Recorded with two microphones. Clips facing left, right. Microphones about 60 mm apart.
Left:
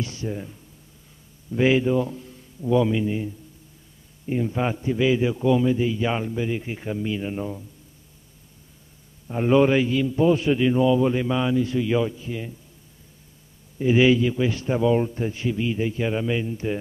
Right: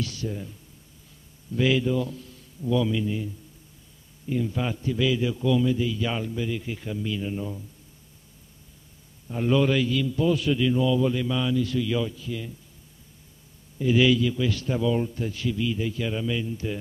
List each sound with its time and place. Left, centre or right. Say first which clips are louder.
0.0 s a man's voice: left 2 dB; left
9.3 s a man's voice: left 4 dB; left
13.7 s a man's voice: left 3 dB; left